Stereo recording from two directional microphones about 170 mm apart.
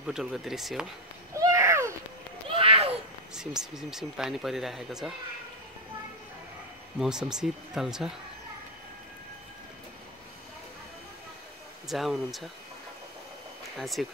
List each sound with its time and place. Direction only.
0.0 s speech: 5° right (ahead or behind)
1.3 s a sound: 15° right (ahead or behind)
2.5 s a sound: 35° right (ahead or behind)
3.3 s speech: 5° right (ahead or behind)
7.0 s speech: 5° right (ahead or behind)
11.9 s speech: centre (ahead or behind)
13.7 s speech: centre (ahead or behind)